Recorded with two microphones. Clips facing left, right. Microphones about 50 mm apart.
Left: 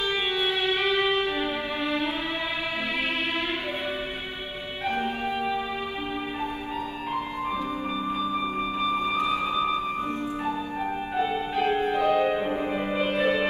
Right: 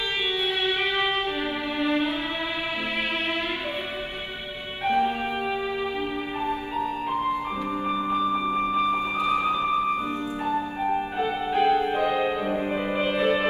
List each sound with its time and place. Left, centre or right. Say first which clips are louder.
0.7 s music: left 1 dB; right
8.5 s music: right 3 dB; right
11.5 s music: right 4 dB; right
12.7 s music: right 1 dB; centre
13.1 s music: right 1 dB; right